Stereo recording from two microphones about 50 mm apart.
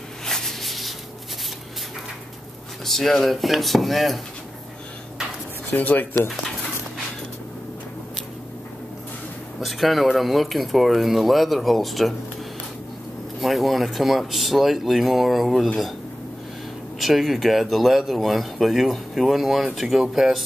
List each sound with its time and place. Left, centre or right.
0.2 s spray: centre
2.8 s speech: centre
5.7 s speech: left
9.6 s speech: centre
13.4 s speech: centre
17.0 s speech: centre